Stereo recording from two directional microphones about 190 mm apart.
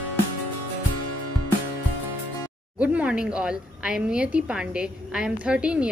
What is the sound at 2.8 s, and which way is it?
A woman's voice, 5° right (ahead or behind).